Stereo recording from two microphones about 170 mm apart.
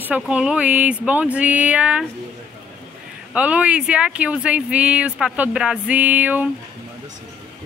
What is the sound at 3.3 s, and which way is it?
Speech, 10° right (ahead or behind).